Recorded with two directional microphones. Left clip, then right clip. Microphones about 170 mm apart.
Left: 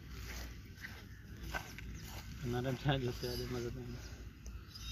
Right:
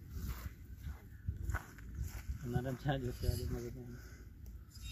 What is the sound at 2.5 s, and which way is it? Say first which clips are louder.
Speech: left 2 dB; centre (ahead or behind).